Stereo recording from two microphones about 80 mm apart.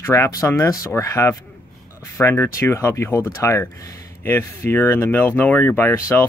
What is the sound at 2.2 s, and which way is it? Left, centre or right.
Speech, left.